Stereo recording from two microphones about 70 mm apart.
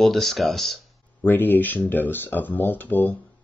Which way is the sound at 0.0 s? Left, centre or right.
Centre.